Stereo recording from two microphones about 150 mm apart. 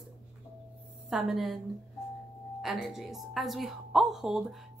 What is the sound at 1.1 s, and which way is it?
Speech, centre (ahead or behind).